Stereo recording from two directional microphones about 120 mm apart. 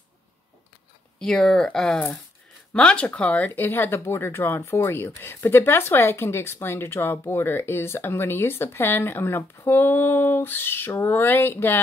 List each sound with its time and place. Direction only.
1.2 s speech: 5° left (ahead or behind)